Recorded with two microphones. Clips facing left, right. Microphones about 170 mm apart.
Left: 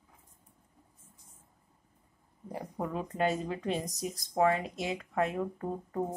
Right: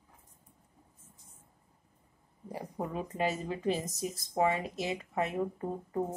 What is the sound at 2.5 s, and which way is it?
Speech, 5° right (ahead or behind).